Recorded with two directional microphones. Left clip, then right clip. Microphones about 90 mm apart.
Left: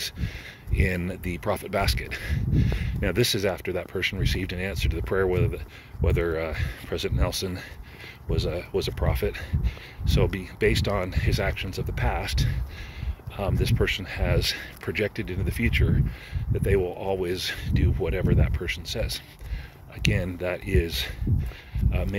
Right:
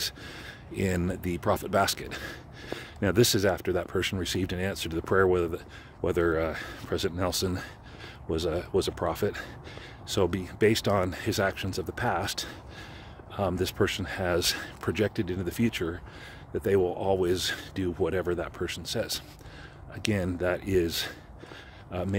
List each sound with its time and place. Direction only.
0.7 s speech: 30° right (ahead or behind)
4.0 s speech: 45° right (ahead or behind)
14.4 s speech: 55° right (ahead or behind)
14.9 s speech: 35° right (ahead or behind)